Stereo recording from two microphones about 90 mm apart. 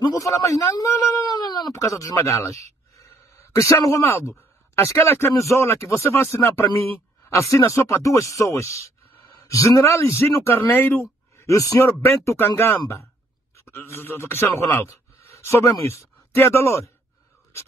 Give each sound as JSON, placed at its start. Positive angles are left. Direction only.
{"t": 0.2, "sound": "speech", "side_deg": 35}
{"t": 0.7, "sound": "a sound", "side_deg": 40}
{"t": 1.7, "sound": "a man's voice", "side_deg": 35}
{"t": 11.5, "sound": "speech", "side_deg": 40}
{"t": 12.1, "sound": "speech", "side_deg": 25}